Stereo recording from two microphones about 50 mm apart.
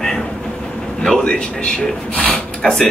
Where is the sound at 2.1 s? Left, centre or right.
Centre.